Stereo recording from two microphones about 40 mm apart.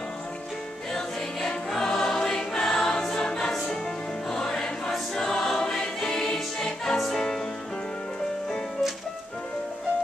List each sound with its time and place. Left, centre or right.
1.7 s choir: centre
4.3 s music: centre
5.1 s choir: centre